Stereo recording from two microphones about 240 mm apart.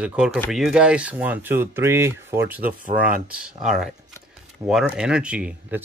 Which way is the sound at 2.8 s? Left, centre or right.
Right.